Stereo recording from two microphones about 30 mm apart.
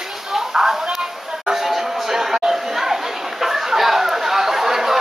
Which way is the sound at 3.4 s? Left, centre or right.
Centre.